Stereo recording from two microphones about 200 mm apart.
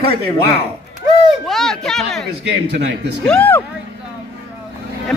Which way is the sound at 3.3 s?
10° left (ahead or behind).